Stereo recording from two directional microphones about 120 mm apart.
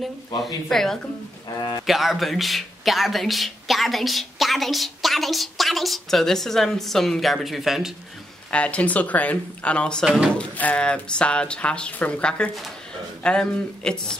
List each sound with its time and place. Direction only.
0.7 s speech: 5° left (ahead or behind)
1.6 s a man's voice: 40° left (ahead or behind)
1.9 s speech: centre (ahead or behind)
8.5 s speech: 10° left (ahead or behind)
10.0 s speech: 5° right (ahead or behind)
10.3 s speech: 10° left (ahead or behind)